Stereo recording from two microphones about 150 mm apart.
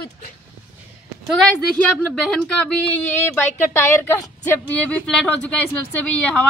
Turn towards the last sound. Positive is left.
turn(degrees=10)  # may be behind; listen again after turning